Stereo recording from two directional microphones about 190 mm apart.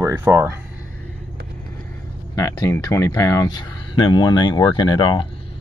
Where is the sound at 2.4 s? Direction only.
15° left (ahead or behind).